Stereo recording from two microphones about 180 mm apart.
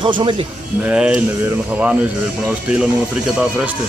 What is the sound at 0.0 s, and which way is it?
Speech, 25° right (ahead or behind).